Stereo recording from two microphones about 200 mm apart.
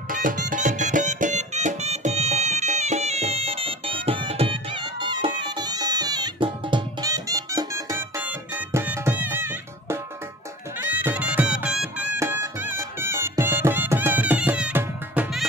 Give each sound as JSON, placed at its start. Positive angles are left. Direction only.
{"t": 0.1, "sound": "music", "side_deg": -40}